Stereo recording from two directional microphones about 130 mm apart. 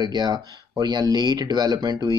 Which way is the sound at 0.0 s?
30° right (ahead or behind).